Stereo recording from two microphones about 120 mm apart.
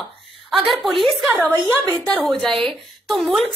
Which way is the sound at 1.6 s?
15° right (ahead or behind).